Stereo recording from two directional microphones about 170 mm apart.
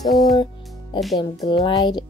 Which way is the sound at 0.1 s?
Centre (ahead or behind).